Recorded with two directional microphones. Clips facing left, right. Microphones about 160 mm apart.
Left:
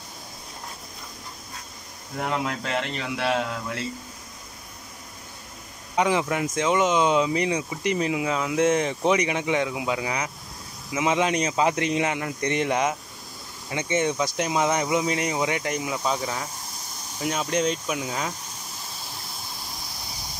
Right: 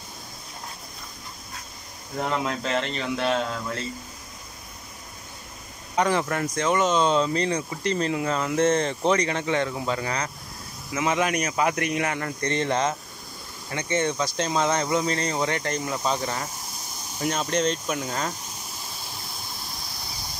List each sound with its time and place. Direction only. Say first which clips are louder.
2.1 s speech: right 1 dB; 10° left (ahead or behind)
5.9 s speech: left 1 dB; 15° left (ahead or behind)